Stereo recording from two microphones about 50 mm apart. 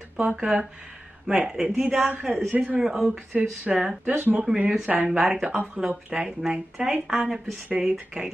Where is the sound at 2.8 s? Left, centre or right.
Centre.